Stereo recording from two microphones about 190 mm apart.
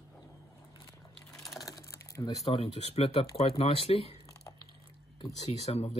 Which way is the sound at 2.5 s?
30° left (ahead or behind).